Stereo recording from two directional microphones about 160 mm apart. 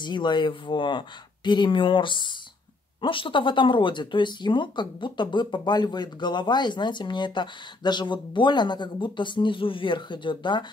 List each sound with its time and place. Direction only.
0.0 s speech: 30° left (ahead or behind)